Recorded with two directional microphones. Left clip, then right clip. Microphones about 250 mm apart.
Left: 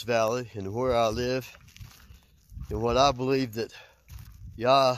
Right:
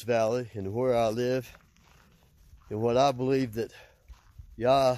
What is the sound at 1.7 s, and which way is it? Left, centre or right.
Dog, left.